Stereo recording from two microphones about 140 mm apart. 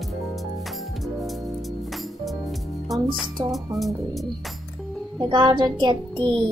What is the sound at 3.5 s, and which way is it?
Speech, centre (ahead or behind).